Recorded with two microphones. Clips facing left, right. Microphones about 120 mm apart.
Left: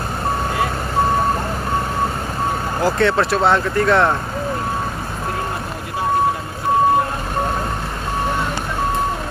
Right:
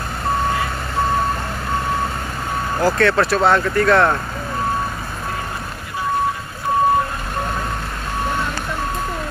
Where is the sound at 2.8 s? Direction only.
20° left (ahead or behind).